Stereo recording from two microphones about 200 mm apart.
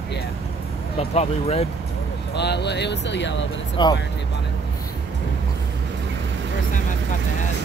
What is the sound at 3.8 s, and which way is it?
Speech, 25° left (ahead or behind).